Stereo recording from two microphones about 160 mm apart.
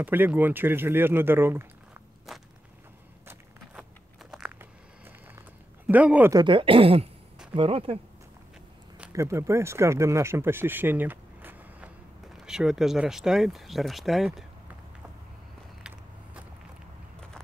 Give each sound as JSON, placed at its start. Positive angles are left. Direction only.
{"t": 0.0, "sound": "speech", "side_deg": -10}
{"t": 2.3, "sound": "speech", "side_deg": 0}
{"t": 3.3, "sound": "a sound", "side_deg": -5}
{"t": 5.9, "sound": "speech", "side_deg": -10}
{"t": 6.3, "sound": "speech", "side_deg": -30}
{"t": 9.1, "sound": "speech", "side_deg": -20}